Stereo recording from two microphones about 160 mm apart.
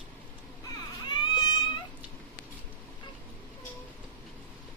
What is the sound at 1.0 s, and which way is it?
Baby cry, 25° left (ahead or behind).